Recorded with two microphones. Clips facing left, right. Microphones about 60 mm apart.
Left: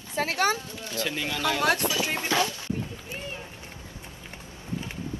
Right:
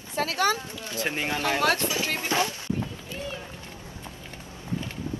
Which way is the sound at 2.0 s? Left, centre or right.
Left.